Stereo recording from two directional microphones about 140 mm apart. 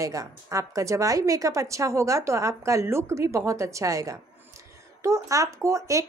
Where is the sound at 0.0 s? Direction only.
25° right (ahead or behind).